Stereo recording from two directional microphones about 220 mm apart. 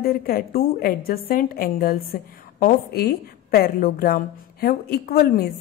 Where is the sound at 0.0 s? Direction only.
40° left (ahead or behind).